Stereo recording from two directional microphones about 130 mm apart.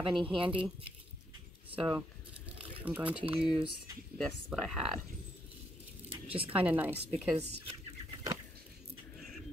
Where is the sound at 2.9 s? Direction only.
10° right (ahead or behind).